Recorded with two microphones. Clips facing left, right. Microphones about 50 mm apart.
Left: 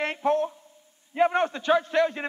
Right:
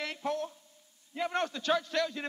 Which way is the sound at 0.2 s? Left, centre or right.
Left.